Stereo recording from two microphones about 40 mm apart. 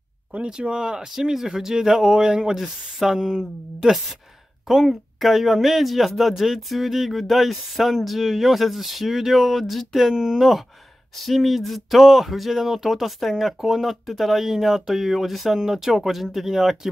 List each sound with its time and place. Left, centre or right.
0.5 s speech: right